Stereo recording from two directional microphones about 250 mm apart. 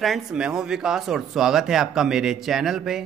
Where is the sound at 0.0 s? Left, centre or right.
Centre.